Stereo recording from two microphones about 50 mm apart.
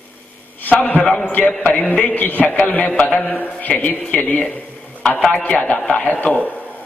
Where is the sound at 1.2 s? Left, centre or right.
Left.